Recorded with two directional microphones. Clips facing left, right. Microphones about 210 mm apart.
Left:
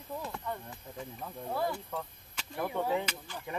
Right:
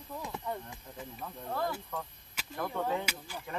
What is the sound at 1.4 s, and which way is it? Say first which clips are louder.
Speech: left 1 dB; 10° left (ahead or behind).